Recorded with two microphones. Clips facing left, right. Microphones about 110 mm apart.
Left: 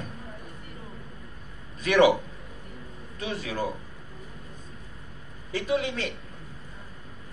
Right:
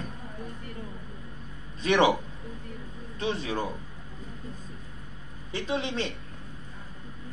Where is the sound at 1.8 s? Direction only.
25° right (ahead or behind).